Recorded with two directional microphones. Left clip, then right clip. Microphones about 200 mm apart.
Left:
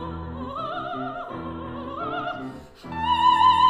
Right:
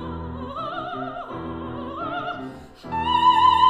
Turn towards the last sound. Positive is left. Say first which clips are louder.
# right 1 dB
turn(degrees=10)  # may be behind; listen again after turning